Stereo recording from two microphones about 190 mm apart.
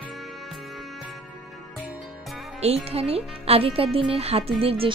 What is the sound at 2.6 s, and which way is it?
A woman's voice, 35° right (ahead or behind).